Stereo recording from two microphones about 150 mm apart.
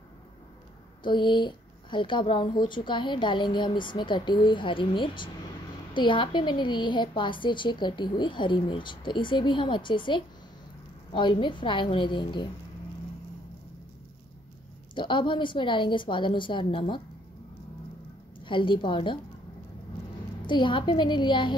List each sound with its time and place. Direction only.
1.0 s a woman's voice: 30° left (ahead or behind)
15.0 s a woman's voice: 35° left (ahead or behind)
18.4 s a woman's voice: 35° left (ahead or behind)
20.4 s a woman's voice: 30° left (ahead or behind)